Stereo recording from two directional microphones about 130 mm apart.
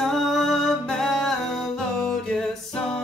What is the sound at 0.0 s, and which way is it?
Music, centre (ahead or behind).